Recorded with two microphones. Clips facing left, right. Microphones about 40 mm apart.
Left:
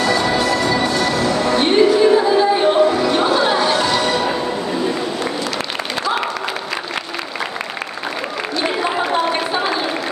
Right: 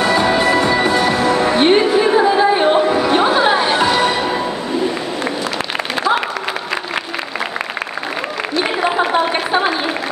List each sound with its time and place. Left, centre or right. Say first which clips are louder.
0.0 s music: right 3 dB; right
8.5 s applause: right 3 dB; right